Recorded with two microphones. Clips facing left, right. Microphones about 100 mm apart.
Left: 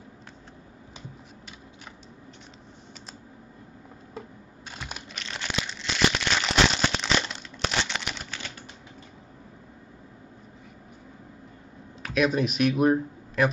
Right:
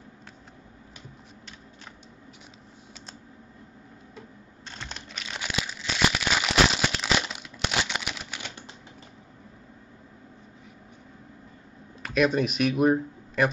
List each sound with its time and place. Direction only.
4.6 s computer keyboard: 5° left (ahead or behind)
5.2 s crumpling: 5° right (ahead or behind)
8.3 s typewriter: 15° right (ahead or behind)
12.0 s speech: centre (ahead or behind)